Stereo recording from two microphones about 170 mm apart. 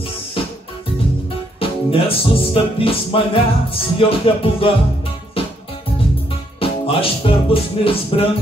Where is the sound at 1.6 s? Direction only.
35° left (ahead or behind).